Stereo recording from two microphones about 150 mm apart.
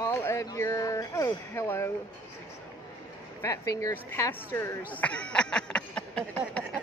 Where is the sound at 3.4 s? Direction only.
20° left (ahead or behind).